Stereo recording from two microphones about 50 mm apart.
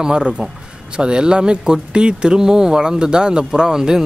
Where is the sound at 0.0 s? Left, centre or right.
Centre.